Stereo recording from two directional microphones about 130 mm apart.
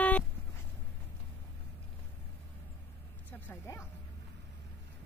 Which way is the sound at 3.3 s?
15° left (ahead or behind).